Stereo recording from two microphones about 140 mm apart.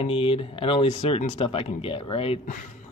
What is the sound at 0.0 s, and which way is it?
Speech, 40° left (ahead or behind).